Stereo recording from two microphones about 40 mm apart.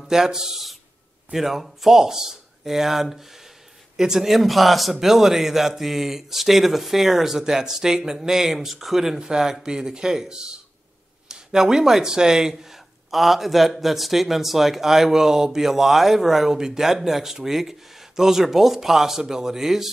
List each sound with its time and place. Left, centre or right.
0.1 s a man's voice: centre